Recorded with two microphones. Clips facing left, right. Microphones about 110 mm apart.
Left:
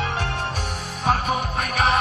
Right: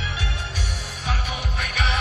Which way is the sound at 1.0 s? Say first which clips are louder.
Left 9 dB; 45° left (ahead or behind).